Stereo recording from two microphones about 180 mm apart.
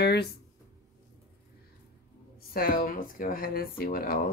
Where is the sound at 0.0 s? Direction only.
65° left (ahead or behind).